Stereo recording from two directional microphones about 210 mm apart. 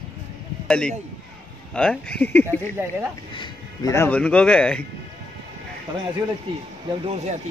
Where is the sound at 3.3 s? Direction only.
25° left (ahead or behind).